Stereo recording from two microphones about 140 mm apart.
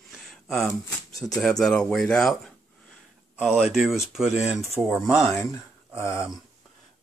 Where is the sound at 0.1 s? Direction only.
Centre (ahead or behind).